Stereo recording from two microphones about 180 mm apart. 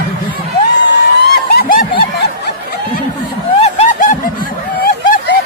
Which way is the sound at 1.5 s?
50° left (ahead or behind).